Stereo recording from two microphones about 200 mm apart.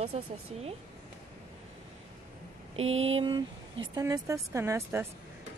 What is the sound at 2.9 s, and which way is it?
Speech, 80° right.